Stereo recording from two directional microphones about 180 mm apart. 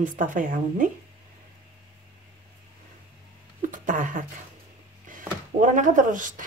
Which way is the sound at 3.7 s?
45° right (ahead or behind).